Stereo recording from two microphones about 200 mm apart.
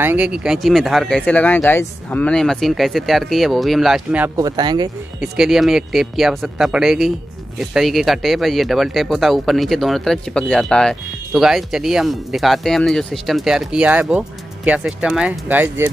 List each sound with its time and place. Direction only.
0.0 s speech: 10° right (ahead or behind)
4.4 s speech: 20° right (ahead or behind)
5.2 s speech: centre (ahead or behind)